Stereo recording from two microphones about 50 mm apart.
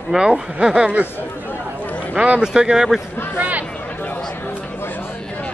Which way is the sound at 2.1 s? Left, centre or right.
Right.